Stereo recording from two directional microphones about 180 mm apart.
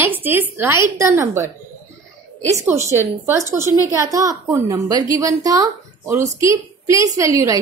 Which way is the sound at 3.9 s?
20° right (ahead or behind).